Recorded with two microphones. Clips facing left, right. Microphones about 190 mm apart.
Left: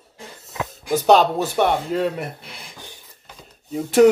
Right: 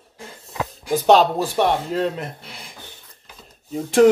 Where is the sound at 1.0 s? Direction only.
Centre (ahead or behind).